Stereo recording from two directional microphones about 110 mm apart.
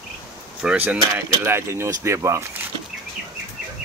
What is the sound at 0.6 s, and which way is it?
Speech, 10° right (ahead or behind).